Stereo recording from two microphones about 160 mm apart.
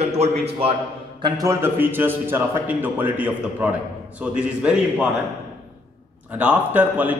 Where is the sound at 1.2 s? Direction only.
20° right (ahead or behind).